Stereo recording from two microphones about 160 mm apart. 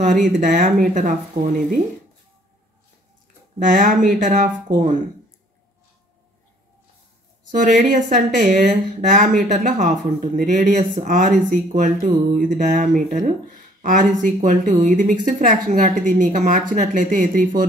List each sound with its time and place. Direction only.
0.0 s speech: 55° right (ahead or behind)
3.5 s speech: 55° right (ahead or behind)
7.5 s speech: 55° right (ahead or behind)
13.7 s a sound: 55° right (ahead or behind)
14.2 s speech: 55° right (ahead or behind)